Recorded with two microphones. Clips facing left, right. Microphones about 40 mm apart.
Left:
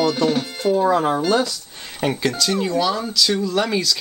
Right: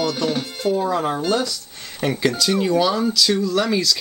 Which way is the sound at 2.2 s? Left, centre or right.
Centre.